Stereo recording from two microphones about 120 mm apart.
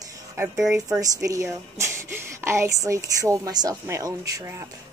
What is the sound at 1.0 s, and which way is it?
A woman's voice, 30° right (ahead or behind).